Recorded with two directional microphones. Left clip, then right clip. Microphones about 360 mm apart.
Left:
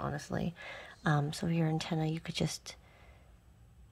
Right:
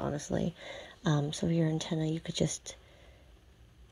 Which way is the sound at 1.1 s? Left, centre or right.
Left.